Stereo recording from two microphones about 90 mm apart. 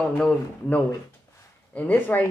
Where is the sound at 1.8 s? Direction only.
20° left (ahead or behind).